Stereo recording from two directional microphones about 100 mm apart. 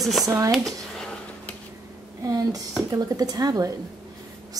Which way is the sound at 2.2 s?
35° right (ahead or behind).